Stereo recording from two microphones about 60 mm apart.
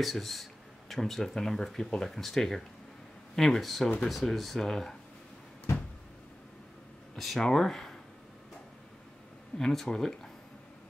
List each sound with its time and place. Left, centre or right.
0.0 s speech: centre
7.2 s speech: centre
9.6 s speech: centre